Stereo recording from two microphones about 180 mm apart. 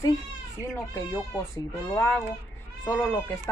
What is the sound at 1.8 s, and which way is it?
Speech, 10° left (ahead or behind).